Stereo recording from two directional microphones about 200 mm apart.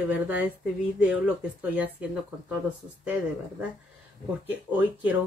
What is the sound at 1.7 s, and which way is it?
Speech, 5° right (ahead or behind).